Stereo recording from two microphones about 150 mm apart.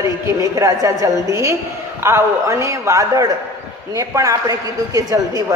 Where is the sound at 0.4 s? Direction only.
20° right (ahead or behind).